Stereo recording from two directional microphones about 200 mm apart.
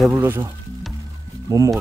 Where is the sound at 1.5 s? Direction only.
15° right (ahead or behind).